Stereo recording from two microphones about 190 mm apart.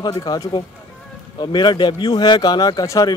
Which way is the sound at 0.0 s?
20° left (ahead or behind).